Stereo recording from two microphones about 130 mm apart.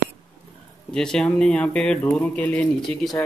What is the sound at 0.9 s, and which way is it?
Speech, 5° left (ahead or behind).